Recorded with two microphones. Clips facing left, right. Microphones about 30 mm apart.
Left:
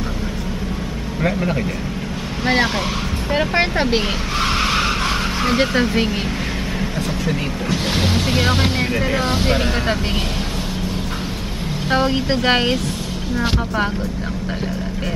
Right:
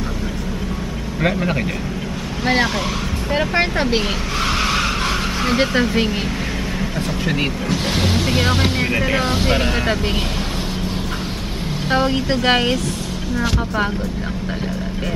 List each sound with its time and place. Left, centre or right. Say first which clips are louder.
2.4 s speech: even; centre
7.7 s speech: left 2 dB; centre
8.9 s speech: right 1 dB; centre
9.5 s speech: right 1 dB; centre
11.9 s speech: even; centre